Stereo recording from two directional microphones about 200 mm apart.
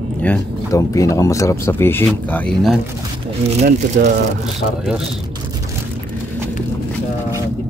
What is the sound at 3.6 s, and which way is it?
Speech, 55° right (ahead or behind).